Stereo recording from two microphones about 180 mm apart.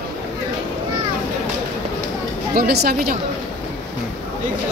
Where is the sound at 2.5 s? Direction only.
60° right (ahead or behind).